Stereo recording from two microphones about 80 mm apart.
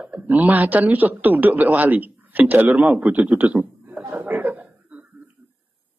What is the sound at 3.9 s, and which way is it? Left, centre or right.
Chuckle, centre.